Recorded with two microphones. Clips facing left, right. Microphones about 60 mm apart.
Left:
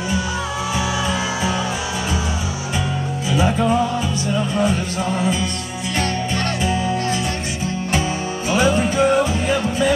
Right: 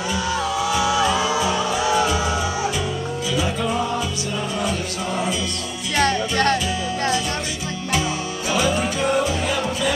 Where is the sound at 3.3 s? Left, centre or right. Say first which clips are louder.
Left 6 dB; left.